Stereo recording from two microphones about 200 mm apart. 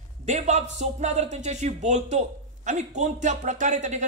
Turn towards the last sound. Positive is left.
turn(degrees=-35)  # may be behind; listen again after turning